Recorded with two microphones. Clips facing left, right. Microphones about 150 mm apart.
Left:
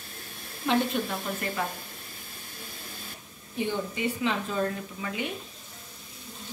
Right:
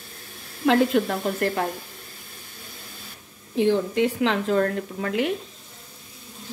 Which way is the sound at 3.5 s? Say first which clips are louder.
Right 10 dB; 90° right.